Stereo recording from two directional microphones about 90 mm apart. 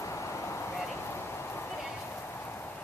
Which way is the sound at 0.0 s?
35° left (ahead or behind).